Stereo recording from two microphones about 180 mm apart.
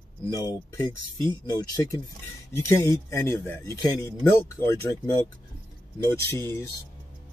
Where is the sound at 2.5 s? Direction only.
15° left (ahead or behind).